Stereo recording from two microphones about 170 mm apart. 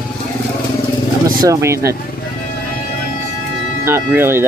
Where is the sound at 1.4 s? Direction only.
15° right (ahead or behind).